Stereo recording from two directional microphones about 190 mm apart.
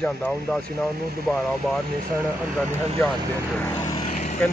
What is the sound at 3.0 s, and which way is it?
Speech, 10° left (ahead or behind).